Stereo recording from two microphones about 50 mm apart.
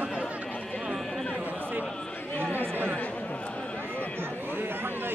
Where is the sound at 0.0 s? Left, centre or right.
Right.